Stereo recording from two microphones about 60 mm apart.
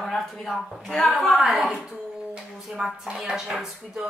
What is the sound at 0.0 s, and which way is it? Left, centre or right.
A woman's voice, centre.